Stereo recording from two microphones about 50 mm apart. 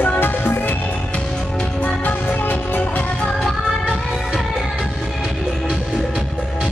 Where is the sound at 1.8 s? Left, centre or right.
Left.